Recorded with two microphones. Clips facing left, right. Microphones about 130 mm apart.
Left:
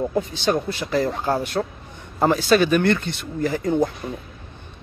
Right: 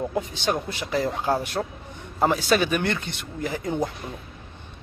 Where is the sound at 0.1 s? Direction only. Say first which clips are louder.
Left 4 dB; 10° right (ahead or behind).